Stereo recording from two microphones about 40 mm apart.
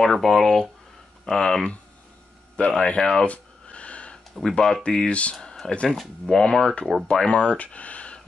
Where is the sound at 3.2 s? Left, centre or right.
Left.